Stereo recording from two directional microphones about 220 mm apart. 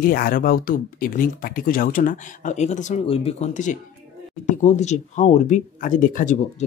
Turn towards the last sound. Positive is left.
turn(degrees=35)  # may be behind; listen again after turning